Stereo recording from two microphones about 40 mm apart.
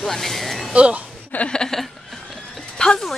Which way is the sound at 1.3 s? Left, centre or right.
Left.